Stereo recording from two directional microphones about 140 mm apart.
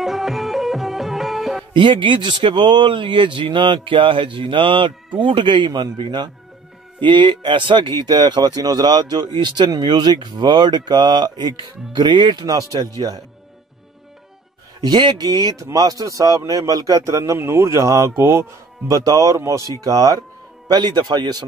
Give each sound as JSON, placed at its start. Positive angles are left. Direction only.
{"t": 0.0, "sound": "music", "side_deg": 0}
{"t": 1.7, "sound": "speech", "side_deg": -35}
{"t": 14.8, "sound": "speech", "side_deg": -30}